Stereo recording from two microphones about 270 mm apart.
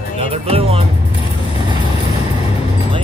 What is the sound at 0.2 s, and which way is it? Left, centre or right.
Music, right.